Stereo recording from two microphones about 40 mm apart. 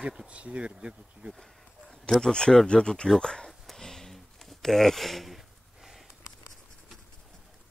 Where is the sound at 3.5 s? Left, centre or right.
Centre.